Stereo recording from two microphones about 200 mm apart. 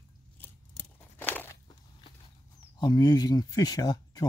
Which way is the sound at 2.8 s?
20° left (ahead or behind).